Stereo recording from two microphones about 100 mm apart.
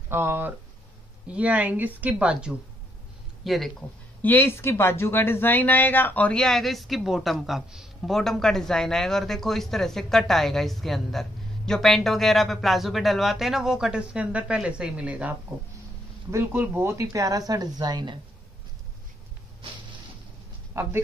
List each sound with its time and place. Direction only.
0.1 s speech: 25° right (ahead or behind)
1.3 s speech: 15° right (ahead or behind)
3.4 s speech: centre (ahead or behind)
4.2 s speech: 20° left (ahead or behind); by 15.3 s 15° right (ahead or behind)
16.3 s speech: 25° right (ahead or behind); by 18.2 s 50° right (ahead or behind)
20.7 s speech: 25° right (ahead or behind)